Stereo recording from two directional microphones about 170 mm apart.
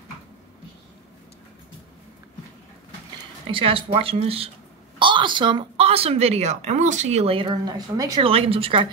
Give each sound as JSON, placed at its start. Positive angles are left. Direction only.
{"t": 3.4, "sound": "speech", "side_deg": -30}
{"t": 8.3, "sound": "speech", "side_deg": -35}